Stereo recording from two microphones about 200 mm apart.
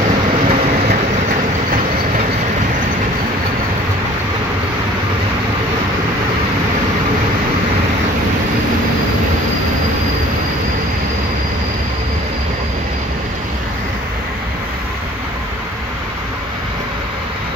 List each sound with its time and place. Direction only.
0.5 s train: 40° right (ahead or behind)